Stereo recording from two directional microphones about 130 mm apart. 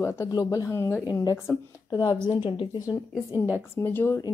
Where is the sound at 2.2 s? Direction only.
40° left (ahead or behind).